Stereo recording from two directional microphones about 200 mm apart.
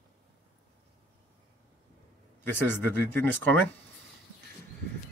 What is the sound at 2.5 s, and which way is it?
Speech, 10° left (ahead or behind).